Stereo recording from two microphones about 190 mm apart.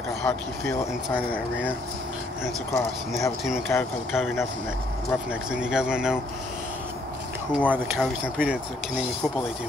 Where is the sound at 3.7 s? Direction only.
15° left (ahead or behind).